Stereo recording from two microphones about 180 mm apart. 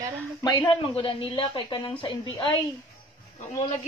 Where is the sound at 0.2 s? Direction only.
20° left (ahead or behind).